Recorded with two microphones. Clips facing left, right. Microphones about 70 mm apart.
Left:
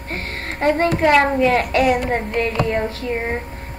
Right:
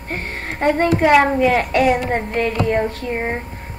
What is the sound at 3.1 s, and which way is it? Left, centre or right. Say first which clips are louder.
Speech: right 1 dB; centre.